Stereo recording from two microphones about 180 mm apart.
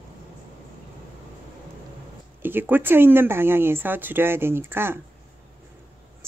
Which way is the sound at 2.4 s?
10° right (ahead or behind).